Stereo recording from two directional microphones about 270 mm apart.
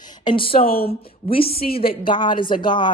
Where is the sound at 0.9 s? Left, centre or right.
Left.